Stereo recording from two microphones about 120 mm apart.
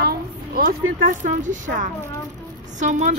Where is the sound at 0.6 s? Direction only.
90° right.